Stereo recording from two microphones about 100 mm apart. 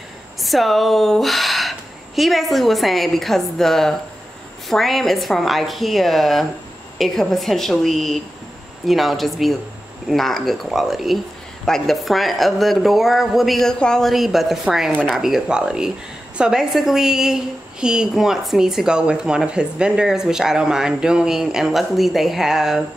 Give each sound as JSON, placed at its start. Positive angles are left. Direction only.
{"t": 0.4, "sound": "a woman's voice", "side_deg": 0}